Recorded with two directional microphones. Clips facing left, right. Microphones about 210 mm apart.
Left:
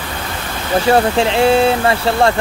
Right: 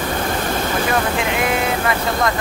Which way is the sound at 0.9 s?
30° left (ahead or behind).